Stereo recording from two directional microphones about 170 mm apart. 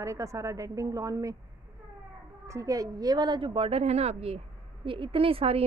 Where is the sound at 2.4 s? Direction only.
20° right (ahead or behind); by 5.6 s 35° right (ahead or behind).